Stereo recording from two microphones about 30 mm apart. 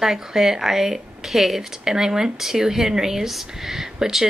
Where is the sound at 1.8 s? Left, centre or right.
Centre.